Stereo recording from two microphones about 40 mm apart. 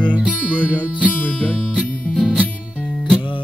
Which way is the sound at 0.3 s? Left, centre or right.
Left.